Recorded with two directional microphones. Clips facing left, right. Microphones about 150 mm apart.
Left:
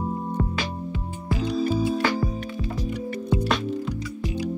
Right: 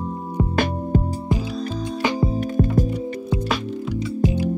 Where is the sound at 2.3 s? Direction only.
50° right (ahead or behind).